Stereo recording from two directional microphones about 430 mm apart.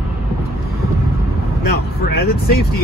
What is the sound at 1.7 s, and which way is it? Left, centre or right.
Vehicle, left.